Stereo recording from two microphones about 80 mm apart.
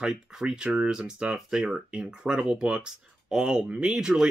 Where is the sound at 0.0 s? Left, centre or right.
Centre.